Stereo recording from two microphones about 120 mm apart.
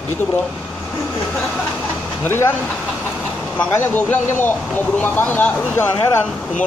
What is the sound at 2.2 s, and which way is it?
A man's voice, 20° left (ahead or behind).